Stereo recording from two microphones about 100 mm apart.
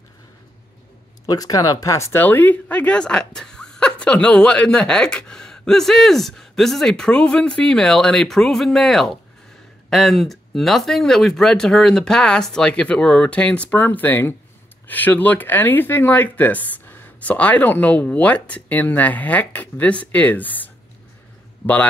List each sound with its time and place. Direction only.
1.2 s speech: 40° left (ahead or behind)
2.2 s speech: 15° left (ahead or behind)